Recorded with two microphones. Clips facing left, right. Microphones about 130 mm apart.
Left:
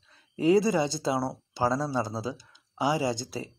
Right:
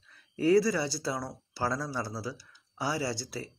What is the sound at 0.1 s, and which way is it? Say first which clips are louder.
Speech: left 2 dB; 20° left (ahead or behind).